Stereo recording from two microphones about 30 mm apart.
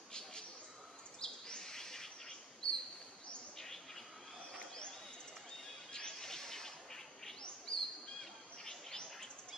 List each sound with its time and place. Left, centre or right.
0.1 s a sound: left
1.2 s bird: centre
3.5 s insect: centre
5.9 s bird: centre
7.7 s bird: left
8.6 s chirp: centre